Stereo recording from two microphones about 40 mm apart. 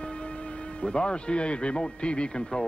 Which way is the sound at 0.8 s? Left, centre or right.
Left.